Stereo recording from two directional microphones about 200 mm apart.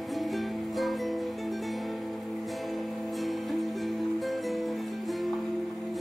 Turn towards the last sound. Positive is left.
turn(degrees=0)  # may be behind; listen again after turning